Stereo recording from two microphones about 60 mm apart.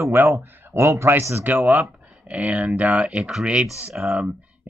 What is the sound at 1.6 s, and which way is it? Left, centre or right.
Speech, right.